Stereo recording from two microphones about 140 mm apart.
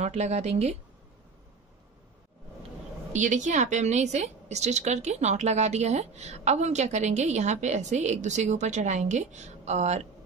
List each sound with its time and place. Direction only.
0.0 s speech: 55° right (ahead or behind)
3.1 s a woman's voice: 60° right (ahead or behind)